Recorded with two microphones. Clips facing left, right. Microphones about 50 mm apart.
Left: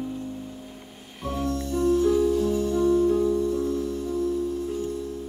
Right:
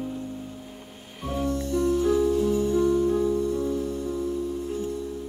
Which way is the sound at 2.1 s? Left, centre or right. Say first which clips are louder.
Even; centre.